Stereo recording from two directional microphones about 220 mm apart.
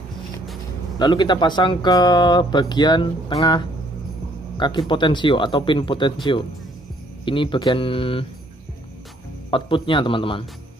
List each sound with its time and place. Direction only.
0.9 s speech: 20° left (ahead or behind)
7.2 s speech: 20° left (ahead or behind)
9.5 s speech: 25° left (ahead or behind)